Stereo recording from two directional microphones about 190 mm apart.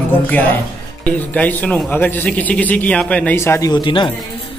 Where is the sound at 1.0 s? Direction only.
10° left (ahead or behind).